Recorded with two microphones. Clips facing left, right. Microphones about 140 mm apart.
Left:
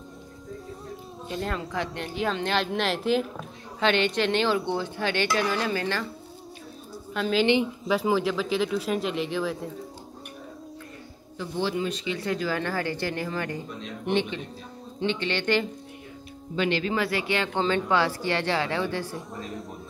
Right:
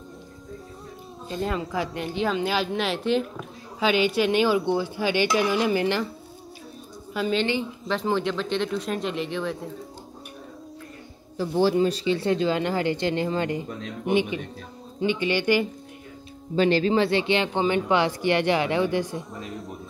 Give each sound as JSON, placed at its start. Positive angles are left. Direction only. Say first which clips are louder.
{"t": 1.3, "sound": "speech", "louder": "right 3 dB", "side_deg": 0}
{"t": 7.2, "sound": "speech", "louder": "left 2 dB", "side_deg": 0}
{"t": 11.3, "sound": "speech", "louder": "right 7 dB", "side_deg": -40}
{"t": 14.0, "sound": "speech", "louder": "right 3 dB", "side_deg": -10}
{"t": 16.5, "sound": "speech", "louder": "right 6 dB", "side_deg": -35}
{"t": 19.3, "sound": "speech", "louder": "right 1 dB", "side_deg": 0}